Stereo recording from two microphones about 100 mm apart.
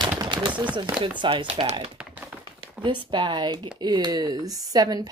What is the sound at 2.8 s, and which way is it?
Speech, 55° right (ahead or behind).